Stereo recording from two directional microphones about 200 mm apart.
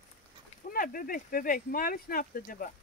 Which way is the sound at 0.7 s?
45° left (ahead or behind).